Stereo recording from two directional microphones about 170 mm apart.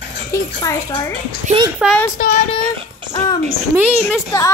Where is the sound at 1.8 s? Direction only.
5° right (ahead or behind).